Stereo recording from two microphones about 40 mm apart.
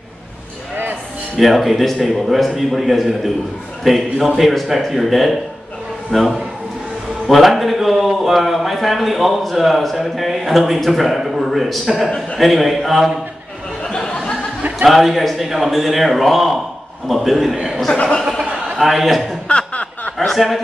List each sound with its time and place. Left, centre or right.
1.3 s a man's voice: centre
13.8 s a sound: centre
14.9 s a man's voice: centre
18.8 s a man's voice: centre
19.4 s chuckle: left
20.3 s a man's voice: centre